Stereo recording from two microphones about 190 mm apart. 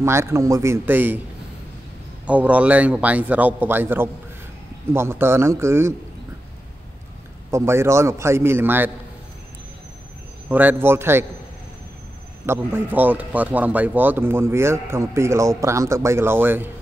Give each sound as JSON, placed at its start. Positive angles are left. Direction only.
{"t": 0.0, "sound": "speech", "side_deg": -15}
{"t": 2.2, "sound": "speech", "side_deg": -5}
{"t": 7.5, "sound": "speech", "side_deg": -15}
{"t": 10.5, "sound": "speech", "side_deg": -10}
{"t": 12.4, "sound": "speech", "side_deg": -10}